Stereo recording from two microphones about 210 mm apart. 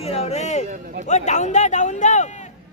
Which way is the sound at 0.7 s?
40° right (ahead or behind).